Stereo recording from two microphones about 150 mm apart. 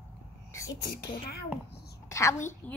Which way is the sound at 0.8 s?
90° left.